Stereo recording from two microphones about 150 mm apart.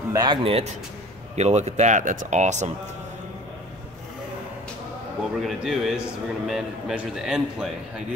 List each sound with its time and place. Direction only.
0.1 s a man's voice: 30° right (ahead or behind)
1.3 s speech: 50° right (ahead or behind)
5.4 s a man's voice: centre (ahead or behind)